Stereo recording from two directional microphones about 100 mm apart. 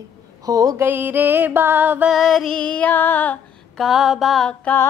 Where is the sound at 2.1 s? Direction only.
5° left (ahead or behind).